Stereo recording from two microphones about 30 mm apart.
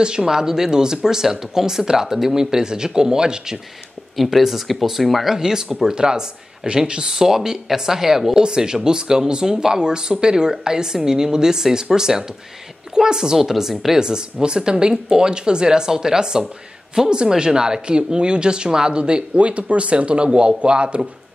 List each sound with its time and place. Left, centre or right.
0.0 s speech: right
4.2 s speech: centre
5.3 s a woman's voice: right
5.9 s speech: right
8.4 s a woman's voice: right
13.9 s speech: right
17.8 s speech: right
19.3 s speech: right